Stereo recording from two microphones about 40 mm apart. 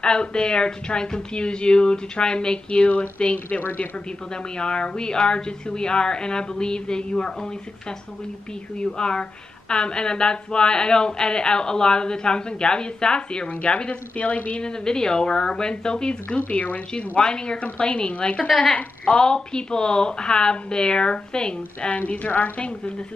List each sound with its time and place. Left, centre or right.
0.0 s a woman's voice: left
4.6 s speech: left
8.7 s speech: left
13.5 s a woman's voice: left
14.6 s speech: centre
16.3 s a woman's voice: left
17.2 s speech: centre
21.9 s a woman's voice: left